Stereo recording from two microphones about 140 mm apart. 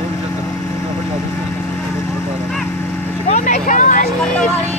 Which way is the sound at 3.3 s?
60° left (ahead or behind).